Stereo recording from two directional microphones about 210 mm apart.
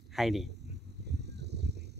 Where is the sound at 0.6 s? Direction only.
55° right (ahead or behind).